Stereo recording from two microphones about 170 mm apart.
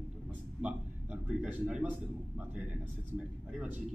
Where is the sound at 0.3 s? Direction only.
10° right (ahead or behind).